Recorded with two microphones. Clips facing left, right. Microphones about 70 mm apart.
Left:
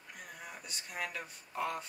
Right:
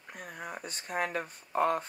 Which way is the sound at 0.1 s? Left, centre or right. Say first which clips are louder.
Right 7 dB; right.